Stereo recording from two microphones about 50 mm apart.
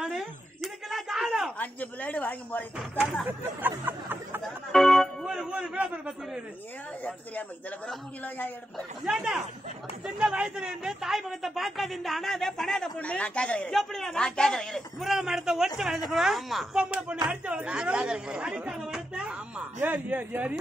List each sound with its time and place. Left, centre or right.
0.1 s a sound: centre
1.6 s a woman's voice: left
3.3 s speech: right
4.7 s music: centre
5.2 s a man's voice: centre
9.1 s speech: centre
10.4 s a man's voice: centre
12.9 s speech: left
13.7 s speech: centre
15.0 s speech: centre
16.7 s speech: right
19.8 s a man's voice: right